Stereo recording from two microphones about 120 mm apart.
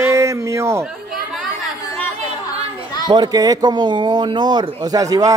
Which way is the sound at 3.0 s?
35° right (ahead or behind).